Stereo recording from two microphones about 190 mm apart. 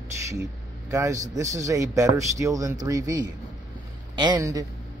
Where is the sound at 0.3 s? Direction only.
15° right (ahead or behind).